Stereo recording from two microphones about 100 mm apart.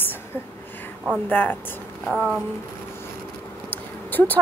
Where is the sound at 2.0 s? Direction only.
5° right (ahead or behind).